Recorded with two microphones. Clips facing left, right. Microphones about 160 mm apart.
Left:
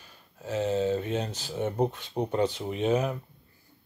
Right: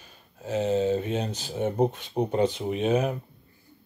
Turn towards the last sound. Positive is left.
turn(degrees=-20)  # may be behind; listen again after turning